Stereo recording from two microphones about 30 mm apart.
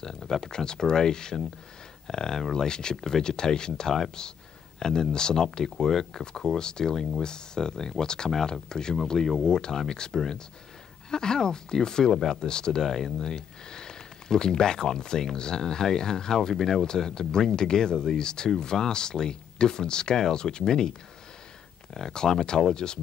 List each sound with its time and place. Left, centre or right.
0.0 s speech: centre
12.8 s speech: centre
13.3 s speech: left
22.1 s speech: left